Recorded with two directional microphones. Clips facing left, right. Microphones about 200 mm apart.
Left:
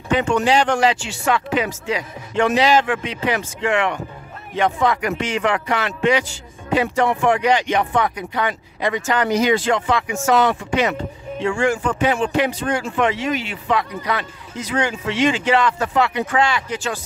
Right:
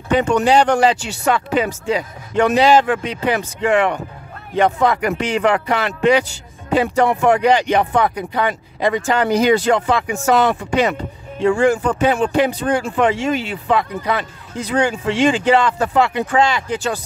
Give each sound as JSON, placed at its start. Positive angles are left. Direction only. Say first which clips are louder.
{"t": 0.2, "sound": "speech", "louder": "right 4 dB", "side_deg": -40}